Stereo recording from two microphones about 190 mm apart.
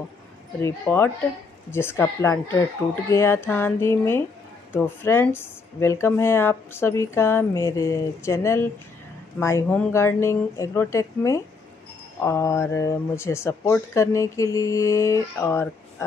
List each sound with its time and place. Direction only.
0.6 s speech: 10° left (ahead or behind)